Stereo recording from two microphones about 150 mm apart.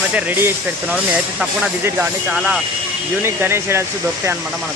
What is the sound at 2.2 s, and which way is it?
Speech, 5° right (ahead or behind).